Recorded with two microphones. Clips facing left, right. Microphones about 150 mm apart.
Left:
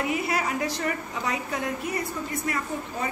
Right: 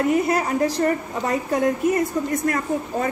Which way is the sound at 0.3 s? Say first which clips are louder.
Right 7 dB; 45° right (ahead or behind).